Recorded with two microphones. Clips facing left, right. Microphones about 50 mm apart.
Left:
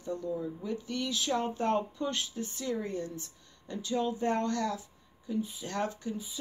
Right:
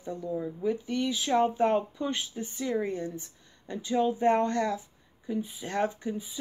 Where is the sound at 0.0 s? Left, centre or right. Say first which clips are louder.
Right 1 dB; centre.